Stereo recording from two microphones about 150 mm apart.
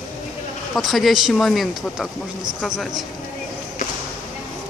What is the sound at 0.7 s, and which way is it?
Speech, centre (ahead or behind).